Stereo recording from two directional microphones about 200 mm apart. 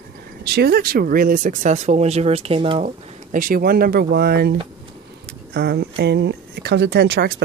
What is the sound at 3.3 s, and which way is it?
Speech, 45° right (ahead or behind).